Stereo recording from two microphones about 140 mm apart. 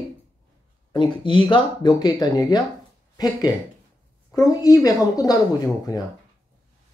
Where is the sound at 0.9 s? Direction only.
35° left (ahead or behind).